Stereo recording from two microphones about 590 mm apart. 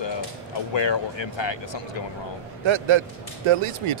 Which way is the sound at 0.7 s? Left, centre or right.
Left.